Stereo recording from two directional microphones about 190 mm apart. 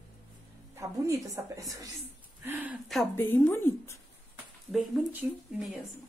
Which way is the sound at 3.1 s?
10° left (ahead or behind).